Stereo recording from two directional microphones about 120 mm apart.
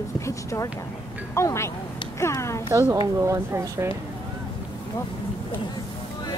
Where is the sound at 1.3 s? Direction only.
25° left (ahead or behind).